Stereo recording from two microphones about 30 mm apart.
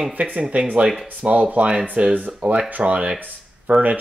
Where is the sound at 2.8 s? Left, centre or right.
Right.